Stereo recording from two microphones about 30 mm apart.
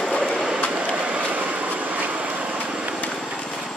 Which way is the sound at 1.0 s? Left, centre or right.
Right.